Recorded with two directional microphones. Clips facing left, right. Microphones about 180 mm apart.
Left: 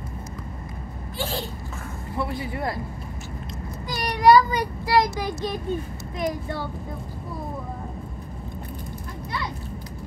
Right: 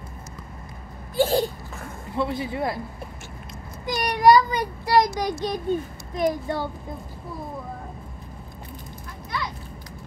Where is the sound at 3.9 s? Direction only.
50° right (ahead or behind).